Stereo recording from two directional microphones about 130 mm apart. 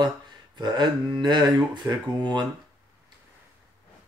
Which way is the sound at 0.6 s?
35° right (ahead or behind).